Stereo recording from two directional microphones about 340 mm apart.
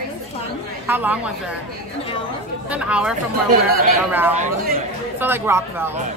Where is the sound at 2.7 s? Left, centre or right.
Centre.